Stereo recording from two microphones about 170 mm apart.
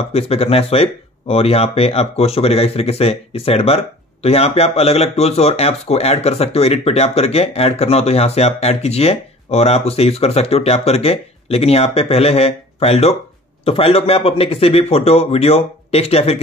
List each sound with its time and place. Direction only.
0.1 s speech: 35° left (ahead or behind)